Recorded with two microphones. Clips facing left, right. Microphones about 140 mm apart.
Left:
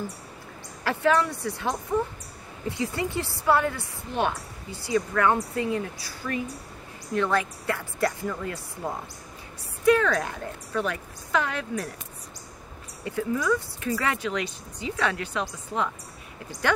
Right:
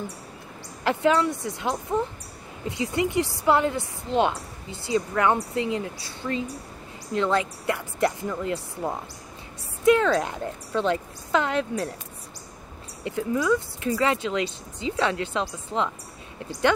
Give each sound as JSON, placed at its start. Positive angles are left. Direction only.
{"t": 0.8, "sound": "a woman's voice", "side_deg": -20}
{"t": 2.8, "sound": "a woman's voice", "side_deg": -20}
{"t": 13.0, "sound": "a woman's voice", "side_deg": -20}